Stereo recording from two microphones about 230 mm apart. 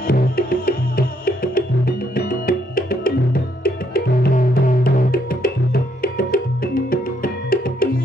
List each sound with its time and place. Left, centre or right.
0.0 s music: left